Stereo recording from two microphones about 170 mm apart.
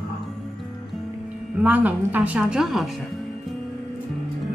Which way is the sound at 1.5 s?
10° right (ahead or behind).